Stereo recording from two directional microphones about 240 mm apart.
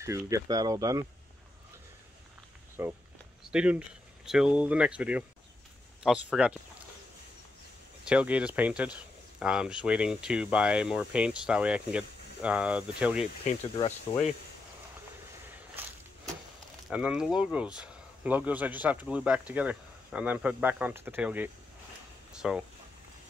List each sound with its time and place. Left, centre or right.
0.3 s speech: centre
2.8 s speech: centre
8.0 s speech: centre
13.4 s speech: left
16.9 s speech: centre